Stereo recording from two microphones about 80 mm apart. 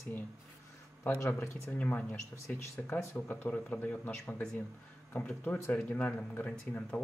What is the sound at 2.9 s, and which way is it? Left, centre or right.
Speech, left.